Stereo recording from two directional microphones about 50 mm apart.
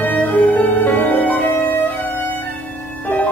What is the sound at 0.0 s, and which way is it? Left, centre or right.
Violin, left.